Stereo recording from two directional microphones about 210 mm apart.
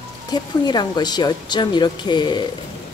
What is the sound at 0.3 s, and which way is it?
Speech, 20° left (ahead or behind).